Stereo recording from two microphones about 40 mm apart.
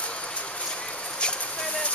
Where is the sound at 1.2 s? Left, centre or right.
Left.